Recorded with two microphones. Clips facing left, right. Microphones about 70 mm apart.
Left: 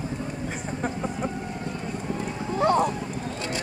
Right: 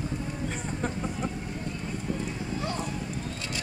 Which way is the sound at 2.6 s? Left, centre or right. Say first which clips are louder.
Left 14 dB; left.